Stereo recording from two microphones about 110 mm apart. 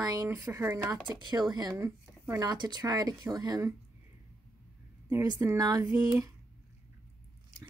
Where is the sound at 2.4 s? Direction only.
40° right (ahead or behind).